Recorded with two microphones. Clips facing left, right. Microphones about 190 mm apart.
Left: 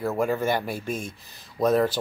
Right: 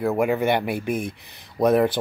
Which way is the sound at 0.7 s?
60° right (ahead or behind).